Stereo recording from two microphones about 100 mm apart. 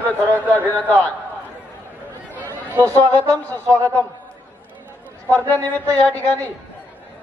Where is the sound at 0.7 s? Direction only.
15° left (ahead or behind).